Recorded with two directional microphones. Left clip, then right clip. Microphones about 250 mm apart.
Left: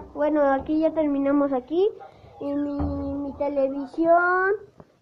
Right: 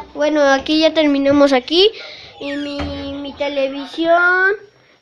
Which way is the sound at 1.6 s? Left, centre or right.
Right.